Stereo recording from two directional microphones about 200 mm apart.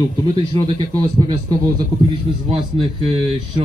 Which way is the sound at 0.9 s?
20° right (ahead or behind).